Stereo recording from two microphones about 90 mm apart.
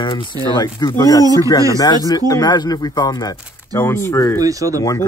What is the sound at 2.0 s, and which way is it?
Speech, 45° left (ahead or behind).